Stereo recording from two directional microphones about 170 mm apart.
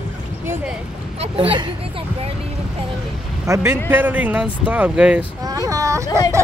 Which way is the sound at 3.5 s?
15° right (ahead or behind).